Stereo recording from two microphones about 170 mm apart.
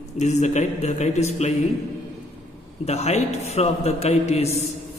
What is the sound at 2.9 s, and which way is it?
A man's voice, 40° left (ahead or behind).